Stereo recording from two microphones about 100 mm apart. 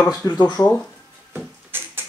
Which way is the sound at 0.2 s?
40° left (ahead or behind).